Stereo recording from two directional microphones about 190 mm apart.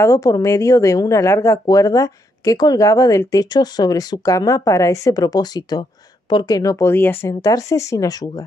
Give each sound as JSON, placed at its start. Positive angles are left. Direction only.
{"t": 0.0, "sound": "speech", "side_deg": 15}